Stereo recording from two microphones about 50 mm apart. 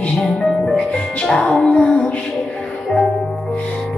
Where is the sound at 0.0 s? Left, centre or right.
Left.